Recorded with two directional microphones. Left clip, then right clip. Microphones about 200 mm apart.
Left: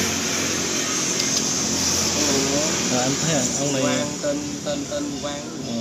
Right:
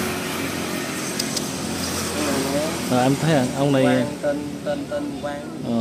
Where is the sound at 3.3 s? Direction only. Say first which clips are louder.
Right 3 dB; 30° right (ahead or behind).